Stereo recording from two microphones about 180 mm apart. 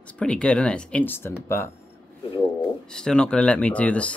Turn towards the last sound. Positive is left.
turn(degrees=5)  # may be behind; listen again after turning